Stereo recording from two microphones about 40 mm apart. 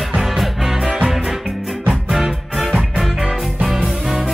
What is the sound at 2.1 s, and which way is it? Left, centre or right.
Music, centre.